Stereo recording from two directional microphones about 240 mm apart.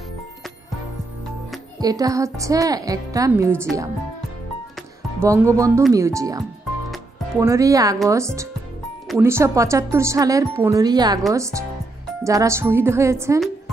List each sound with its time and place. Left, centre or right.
1.8 s speech: centre
5.2 s speech: centre